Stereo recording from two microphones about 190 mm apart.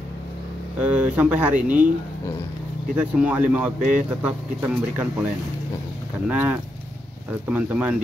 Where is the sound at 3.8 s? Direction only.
45° right (ahead or behind).